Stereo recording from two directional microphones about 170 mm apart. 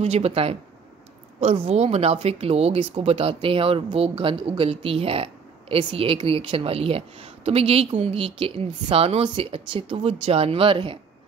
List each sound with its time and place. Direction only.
0.0 s speech: 40° right (ahead or behind)